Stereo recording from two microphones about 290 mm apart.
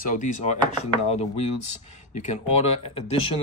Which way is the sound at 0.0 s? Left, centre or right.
Left.